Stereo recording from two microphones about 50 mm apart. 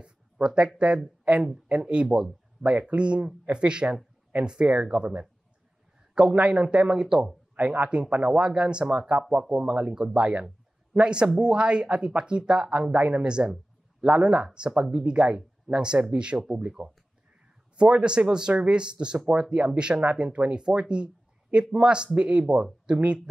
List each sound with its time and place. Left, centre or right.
0.7 s speech: centre
7.5 s speech: right